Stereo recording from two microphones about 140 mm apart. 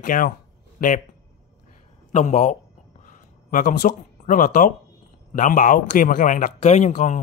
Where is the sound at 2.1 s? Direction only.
60° left (ahead or behind).